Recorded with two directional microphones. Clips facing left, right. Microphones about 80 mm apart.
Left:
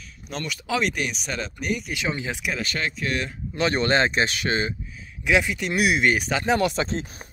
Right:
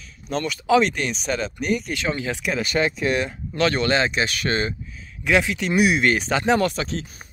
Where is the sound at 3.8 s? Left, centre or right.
Left.